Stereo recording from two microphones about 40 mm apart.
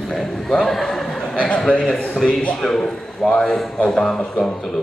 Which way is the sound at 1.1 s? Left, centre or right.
Left.